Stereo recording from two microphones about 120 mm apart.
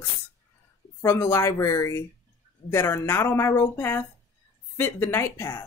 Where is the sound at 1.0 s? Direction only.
20° left (ahead or behind).